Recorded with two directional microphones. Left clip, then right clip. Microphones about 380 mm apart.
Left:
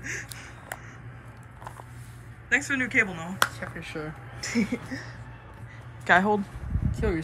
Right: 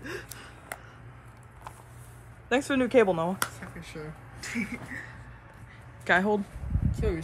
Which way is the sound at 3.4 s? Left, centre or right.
Centre.